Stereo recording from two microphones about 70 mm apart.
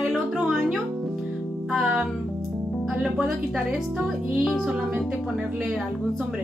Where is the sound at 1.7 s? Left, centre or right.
Centre.